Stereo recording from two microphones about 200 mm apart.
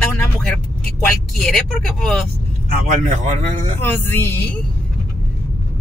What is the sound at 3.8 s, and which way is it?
Music, 10° left (ahead or behind).